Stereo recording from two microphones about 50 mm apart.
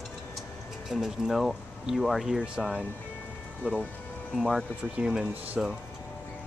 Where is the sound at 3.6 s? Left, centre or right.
Right.